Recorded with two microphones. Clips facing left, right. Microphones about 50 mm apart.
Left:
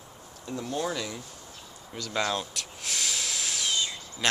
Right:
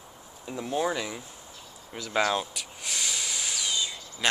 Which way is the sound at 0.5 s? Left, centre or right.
Centre.